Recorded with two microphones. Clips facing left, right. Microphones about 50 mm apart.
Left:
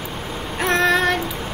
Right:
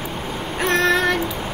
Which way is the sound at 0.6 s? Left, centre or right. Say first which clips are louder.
Even; centre.